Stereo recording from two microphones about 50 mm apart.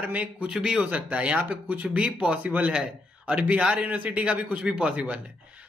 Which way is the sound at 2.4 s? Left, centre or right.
Right.